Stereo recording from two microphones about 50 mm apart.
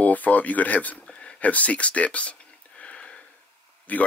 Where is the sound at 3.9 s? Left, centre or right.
Left.